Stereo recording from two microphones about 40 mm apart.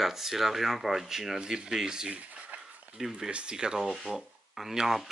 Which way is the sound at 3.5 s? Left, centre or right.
Centre.